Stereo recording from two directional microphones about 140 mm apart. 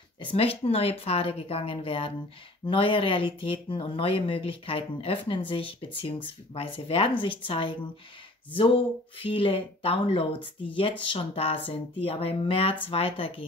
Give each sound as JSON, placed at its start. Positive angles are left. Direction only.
{"t": 0.2, "sound": "speech", "side_deg": 40}